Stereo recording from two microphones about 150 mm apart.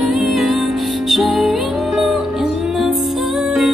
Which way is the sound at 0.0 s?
Centre (ahead or behind).